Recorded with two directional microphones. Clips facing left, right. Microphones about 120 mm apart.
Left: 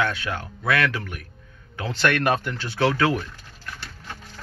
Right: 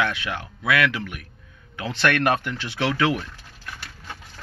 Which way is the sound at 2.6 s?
35° left (ahead or behind).